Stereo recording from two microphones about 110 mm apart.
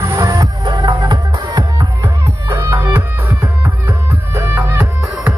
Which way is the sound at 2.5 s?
25° right (ahead or behind).